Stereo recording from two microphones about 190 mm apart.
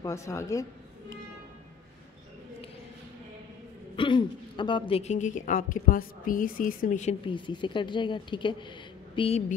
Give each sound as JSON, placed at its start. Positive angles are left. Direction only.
{"t": 0.0, "sound": "a woman's voice", "side_deg": 15}
{"t": 3.9, "sound": "a woman's voice", "side_deg": 25}
{"t": 7.2, "sound": "a woman's voice", "side_deg": 25}